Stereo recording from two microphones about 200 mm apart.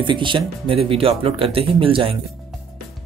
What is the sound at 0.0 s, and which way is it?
Speech, 25° right (ahead or behind).